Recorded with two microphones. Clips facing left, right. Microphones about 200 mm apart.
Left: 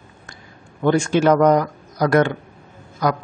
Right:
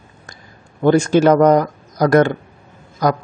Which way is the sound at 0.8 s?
40° right (ahead or behind).